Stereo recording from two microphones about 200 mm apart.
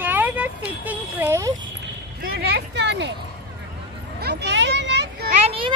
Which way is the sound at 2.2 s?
55° right (ahead or behind).